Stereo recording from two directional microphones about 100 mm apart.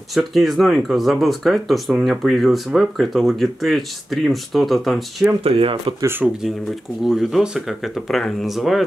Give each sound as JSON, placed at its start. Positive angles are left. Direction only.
{"t": 0.1, "sound": "speech", "side_deg": 0}
{"t": 5.4, "sound": "speech", "side_deg": -70}
{"t": 6.2, "sound": "speech", "side_deg": -5}